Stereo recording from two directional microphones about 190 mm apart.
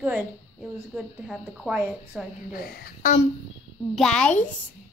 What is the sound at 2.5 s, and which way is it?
Speech, 50° left (ahead or behind).